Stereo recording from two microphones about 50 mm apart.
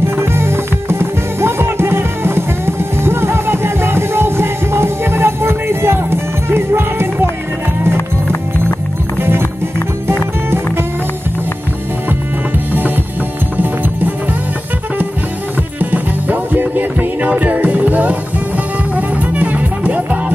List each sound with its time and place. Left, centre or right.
0.0 s music: right
9.2 s music: right
12.7 s music: right
15.8 s music: right